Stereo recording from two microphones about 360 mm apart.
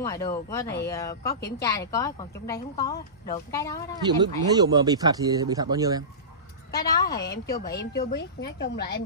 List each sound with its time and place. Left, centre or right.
0.0 s a woman's voice: centre
4.2 s speech: centre
6.7 s a woman's voice: centre
7.7 s a woman's voice: left